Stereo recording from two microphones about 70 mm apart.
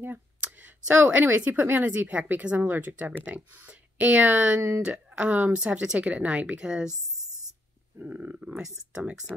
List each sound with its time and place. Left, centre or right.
0.0 s speech: right
4.6 s speech: right
4.8 s speech: centre
8.0 s speech: right